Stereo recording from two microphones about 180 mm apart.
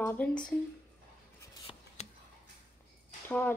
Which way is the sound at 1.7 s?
25° left (ahead or behind).